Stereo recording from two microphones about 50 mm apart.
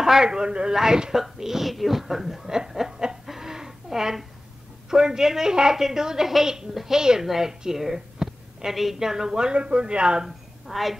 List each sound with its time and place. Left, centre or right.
0.0 s a woman's voice: centre
3.3 s a sound: centre
4.9 s a woman's voice: centre
10.7 s speech: centre